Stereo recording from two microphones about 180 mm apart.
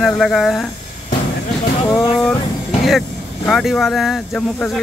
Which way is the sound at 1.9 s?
20° left (ahead or behind).